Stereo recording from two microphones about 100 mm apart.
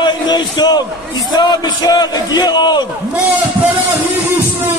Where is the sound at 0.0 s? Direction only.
45° left (ahead or behind).